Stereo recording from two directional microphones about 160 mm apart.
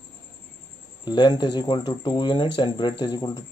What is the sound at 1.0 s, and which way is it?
Speech, 25° left (ahead or behind).